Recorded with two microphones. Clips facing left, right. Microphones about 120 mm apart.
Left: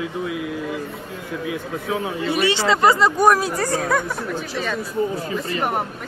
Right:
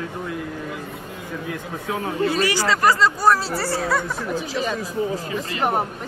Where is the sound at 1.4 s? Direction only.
5° left (ahead or behind).